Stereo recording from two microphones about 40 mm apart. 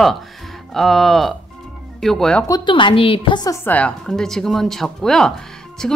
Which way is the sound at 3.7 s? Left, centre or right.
Left.